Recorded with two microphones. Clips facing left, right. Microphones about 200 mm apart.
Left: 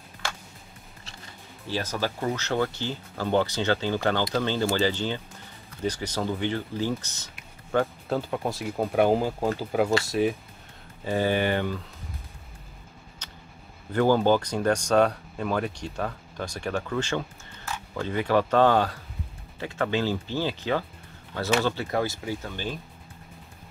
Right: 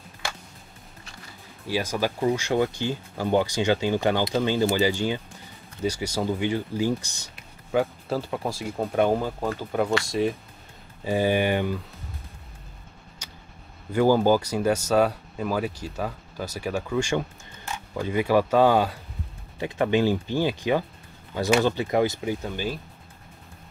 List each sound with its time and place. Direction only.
1.7 s speech: 10° right (ahead or behind)
11.1 s speech: 15° right (ahead or behind)
13.2 s a sound: 10° right (ahead or behind)
13.9 s speech: 10° right (ahead or behind)